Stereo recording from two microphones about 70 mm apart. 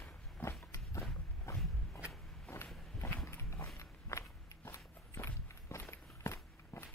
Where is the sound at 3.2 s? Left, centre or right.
Left.